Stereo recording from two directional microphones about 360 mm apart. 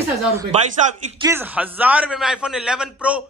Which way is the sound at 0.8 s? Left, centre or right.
Centre.